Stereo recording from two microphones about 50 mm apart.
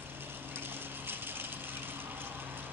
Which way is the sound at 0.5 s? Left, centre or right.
Right.